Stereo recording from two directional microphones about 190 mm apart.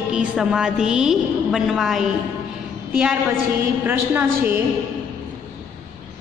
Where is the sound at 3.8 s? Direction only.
10° right (ahead or behind).